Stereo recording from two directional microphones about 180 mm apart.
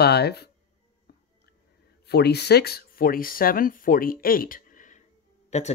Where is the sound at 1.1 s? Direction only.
60° left (ahead or behind).